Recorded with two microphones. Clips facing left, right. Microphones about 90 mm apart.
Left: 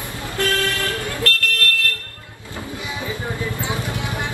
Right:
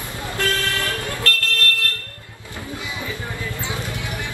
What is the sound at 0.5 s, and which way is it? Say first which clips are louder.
Vehicle: left 2 dB; 20° right (ahead or behind).